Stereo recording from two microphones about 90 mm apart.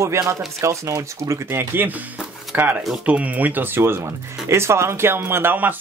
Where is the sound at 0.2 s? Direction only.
30° right (ahead or behind).